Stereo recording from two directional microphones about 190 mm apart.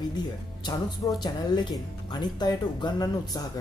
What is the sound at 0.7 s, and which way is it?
Speech, 20° left (ahead or behind).